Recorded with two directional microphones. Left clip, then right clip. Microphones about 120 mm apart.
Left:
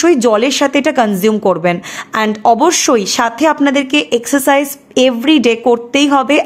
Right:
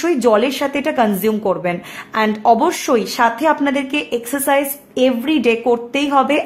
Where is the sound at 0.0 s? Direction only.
40° left (ahead or behind).